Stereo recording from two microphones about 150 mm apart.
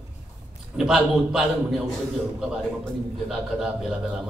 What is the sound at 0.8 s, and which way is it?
A man's voice, centre (ahead or behind).